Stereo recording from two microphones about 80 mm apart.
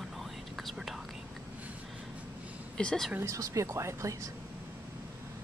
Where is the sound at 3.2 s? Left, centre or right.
Right.